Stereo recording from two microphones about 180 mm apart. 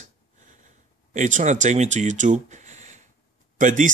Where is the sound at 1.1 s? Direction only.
40° right (ahead or behind).